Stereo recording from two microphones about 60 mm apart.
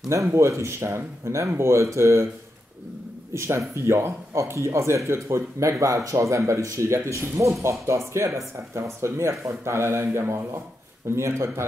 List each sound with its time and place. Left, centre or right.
0.1 s speech: right
3.3 s speech: right